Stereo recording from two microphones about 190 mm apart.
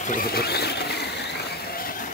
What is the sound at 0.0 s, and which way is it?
Vehicle, 50° left (ahead or behind).